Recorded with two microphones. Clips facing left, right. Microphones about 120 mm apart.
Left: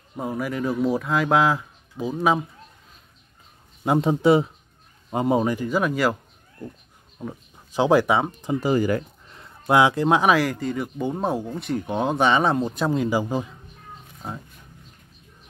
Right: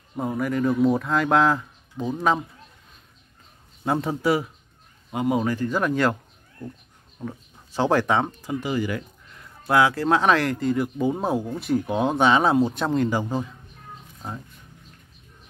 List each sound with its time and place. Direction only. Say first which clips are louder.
0.1 s speech: right 2 dB; 5° left (ahead or behind)
3.8 s speech: left 4 dB; 20° left (ahead or behind)
5.5 s speech: even; 10° left (ahead or behind)
7.2 s speech: even; 15° left (ahead or behind)
8.5 s speech: left 5 dB; 40° left (ahead or behind)
9.3 s speech: left 2 dB; 25° left (ahead or behind)